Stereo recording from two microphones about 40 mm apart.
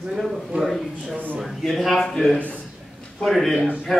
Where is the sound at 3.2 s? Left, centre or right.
Centre.